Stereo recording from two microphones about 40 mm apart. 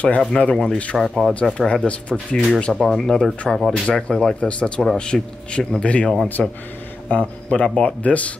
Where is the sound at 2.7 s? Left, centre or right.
Centre.